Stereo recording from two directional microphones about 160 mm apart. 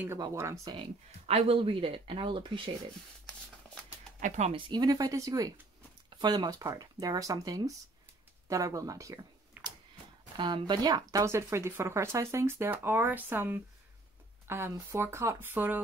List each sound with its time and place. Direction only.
0.2 s speech: 20° right (ahead or behind)
0.7 s speech: 40° right (ahead or behind)
4.2 s speech: 45° right (ahead or behind)
4.6 s speech: 30° right (ahead or behind); by 15.8 s 10° right (ahead or behind)